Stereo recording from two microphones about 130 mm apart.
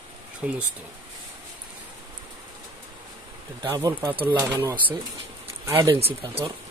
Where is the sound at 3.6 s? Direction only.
20° right (ahead or behind).